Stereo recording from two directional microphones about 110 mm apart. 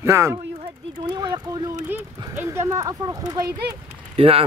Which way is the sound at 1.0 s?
45° right (ahead or behind).